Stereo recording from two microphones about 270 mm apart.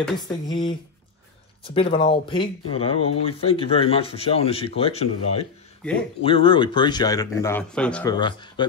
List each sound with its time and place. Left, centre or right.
0.5 s speech: centre